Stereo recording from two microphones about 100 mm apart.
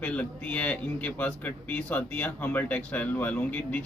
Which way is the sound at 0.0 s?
15° left (ahead or behind).